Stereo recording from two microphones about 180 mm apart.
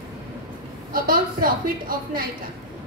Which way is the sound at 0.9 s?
50° right (ahead or behind).